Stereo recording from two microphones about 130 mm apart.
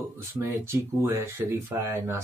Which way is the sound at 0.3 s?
20° right (ahead or behind).